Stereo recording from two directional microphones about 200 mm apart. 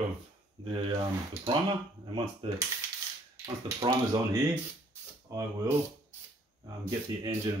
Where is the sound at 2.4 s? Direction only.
25° right (ahead or behind).